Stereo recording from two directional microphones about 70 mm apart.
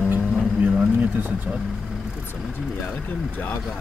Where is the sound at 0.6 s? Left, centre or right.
Centre.